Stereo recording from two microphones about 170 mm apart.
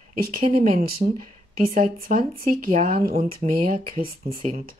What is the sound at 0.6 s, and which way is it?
Speech, 50° right (ahead or behind).